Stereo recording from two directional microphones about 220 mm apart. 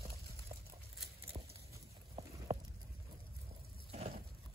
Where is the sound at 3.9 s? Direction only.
30° right (ahead or behind).